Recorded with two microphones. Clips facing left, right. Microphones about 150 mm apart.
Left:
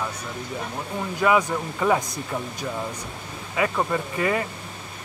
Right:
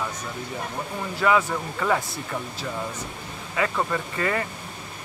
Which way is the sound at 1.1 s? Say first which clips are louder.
Left 1 dB; 15° left (ahead or behind).